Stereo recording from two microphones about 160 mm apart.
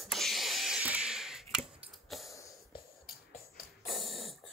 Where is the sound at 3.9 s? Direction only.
Centre (ahead or behind).